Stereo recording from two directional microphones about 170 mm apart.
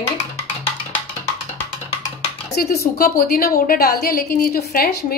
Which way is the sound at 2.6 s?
60° left (ahead or behind).